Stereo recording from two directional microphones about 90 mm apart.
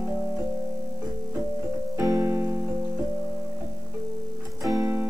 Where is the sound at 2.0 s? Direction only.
40° right (ahead or behind).